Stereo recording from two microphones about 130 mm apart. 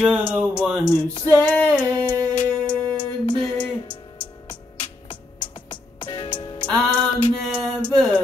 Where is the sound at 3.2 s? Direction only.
40° left (ahead or behind).